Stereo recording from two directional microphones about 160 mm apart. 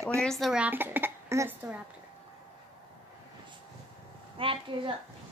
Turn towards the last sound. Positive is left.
turn(degrees=-35)  # may be behind; listen again after turning